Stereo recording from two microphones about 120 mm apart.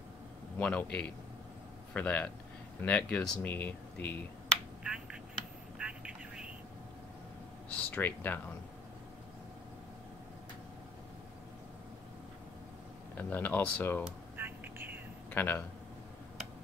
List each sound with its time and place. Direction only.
0.6 s speech: 10° left (ahead or behind)
4.8 s telephone: 5° right (ahead or behind)
7.7 s speech: 15° left (ahead or behind)
13.1 s speech: 15° left (ahead or behind)
14.3 s a sound: 15° right (ahead or behind)
15.3 s speech: 20° left (ahead or behind)